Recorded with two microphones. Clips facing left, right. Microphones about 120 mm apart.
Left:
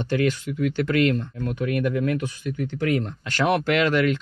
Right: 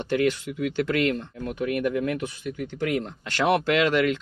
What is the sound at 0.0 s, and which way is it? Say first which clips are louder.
Speech: even; 15° right (ahead or behind).